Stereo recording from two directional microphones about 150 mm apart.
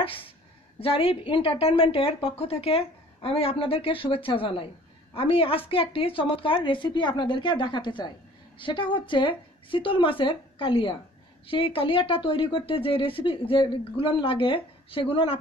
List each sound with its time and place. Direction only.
0.7 s a woman's voice: 40° left (ahead or behind)